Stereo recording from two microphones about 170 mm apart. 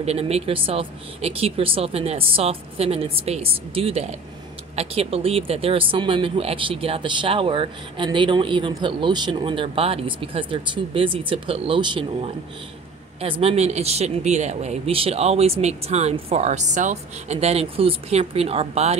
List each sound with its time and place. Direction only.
0.0 s speech: 40° right (ahead or behind)